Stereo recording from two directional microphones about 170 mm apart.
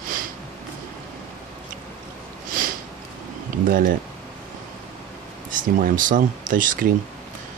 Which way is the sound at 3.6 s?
55° right (ahead or behind).